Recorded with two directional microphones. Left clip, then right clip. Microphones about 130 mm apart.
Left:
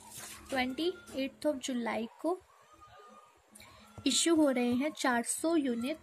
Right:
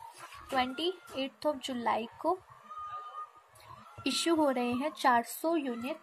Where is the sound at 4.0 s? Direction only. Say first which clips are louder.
Left 1 dB; 45° left (ahead or behind).